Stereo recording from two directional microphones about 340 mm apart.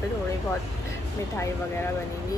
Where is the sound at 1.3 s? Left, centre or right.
Centre.